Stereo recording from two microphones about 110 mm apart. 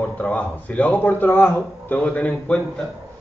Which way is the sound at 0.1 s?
15° left (ahead or behind).